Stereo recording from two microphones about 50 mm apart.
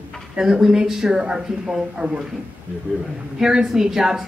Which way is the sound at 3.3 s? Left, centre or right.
Centre.